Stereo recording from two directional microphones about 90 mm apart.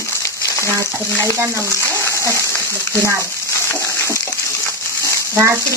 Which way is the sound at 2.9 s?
30° right (ahead or behind).